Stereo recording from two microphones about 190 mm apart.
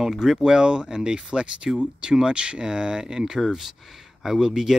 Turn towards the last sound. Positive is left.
turn(degrees=-5)  # may be behind; listen again after turning